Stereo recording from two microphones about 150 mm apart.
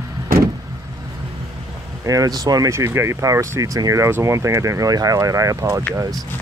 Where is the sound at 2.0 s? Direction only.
25° right (ahead or behind).